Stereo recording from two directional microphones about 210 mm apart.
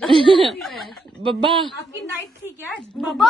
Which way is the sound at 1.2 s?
25° right (ahead or behind).